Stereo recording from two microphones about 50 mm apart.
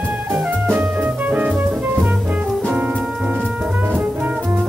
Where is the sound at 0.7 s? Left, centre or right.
Right.